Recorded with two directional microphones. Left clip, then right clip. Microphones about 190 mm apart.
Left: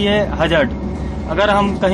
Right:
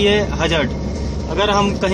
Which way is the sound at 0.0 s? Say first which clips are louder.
Even; centre (ahead or behind).